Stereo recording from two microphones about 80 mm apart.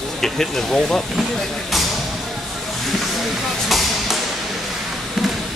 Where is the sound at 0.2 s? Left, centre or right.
Centre.